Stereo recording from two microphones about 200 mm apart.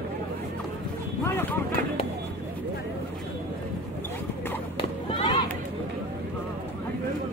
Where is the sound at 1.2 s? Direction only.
10° left (ahead or behind).